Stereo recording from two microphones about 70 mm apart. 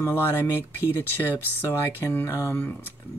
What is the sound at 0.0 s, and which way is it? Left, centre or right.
Speech, left.